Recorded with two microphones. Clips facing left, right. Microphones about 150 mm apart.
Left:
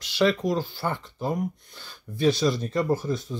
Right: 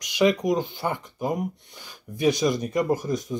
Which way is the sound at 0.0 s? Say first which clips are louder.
Right 2 dB; 15° right (ahead or behind).